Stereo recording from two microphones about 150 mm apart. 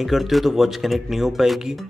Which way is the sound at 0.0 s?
Centre (ahead or behind).